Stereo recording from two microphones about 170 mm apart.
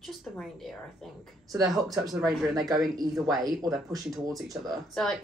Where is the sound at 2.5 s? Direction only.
20° right (ahead or behind).